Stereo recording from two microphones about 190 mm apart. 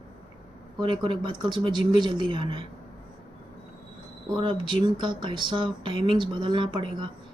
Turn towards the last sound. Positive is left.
turn(degrees=-25)  # may be behind; listen again after turning